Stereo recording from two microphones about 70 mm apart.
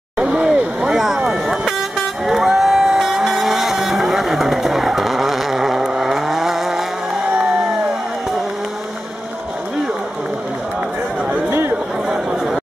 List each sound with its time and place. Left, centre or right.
0.2 s a sound: centre
0.7 s vehicle: centre
12.1 s chatter: centre